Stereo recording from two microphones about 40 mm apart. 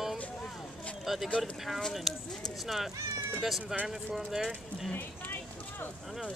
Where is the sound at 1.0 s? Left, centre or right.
Centre.